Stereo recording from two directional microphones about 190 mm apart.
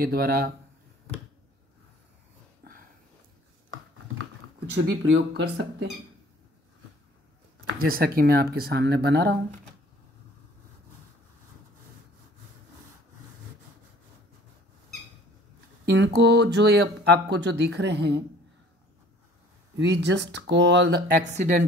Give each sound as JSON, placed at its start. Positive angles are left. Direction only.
{"t": 0.0, "sound": "speech", "side_deg": -50}
{"t": 2.6, "sound": "a sound", "side_deg": -55}
{"t": 5.1, "sound": "speech", "side_deg": -60}
{"t": 7.8, "sound": "speech", "side_deg": -50}
{"t": 15.8, "sound": "speech", "side_deg": -60}
{"t": 19.8, "sound": "speech", "side_deg": -65}
{"t": 21.1, "sound": "speech", "side_deg": -40}